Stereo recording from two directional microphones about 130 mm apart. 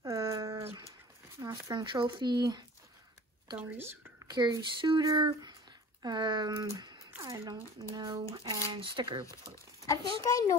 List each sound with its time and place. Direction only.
0.0 s a sound: 25° right (ahead or behind)
1.7 s speech: 35° right (ahead or behind)
3.5 s a woman's voice: 15° right (ahead or behind)
4.3 s speech: 35° right (ahead or behind)
9.8 s a child's voice: 25° left (ahead or behind)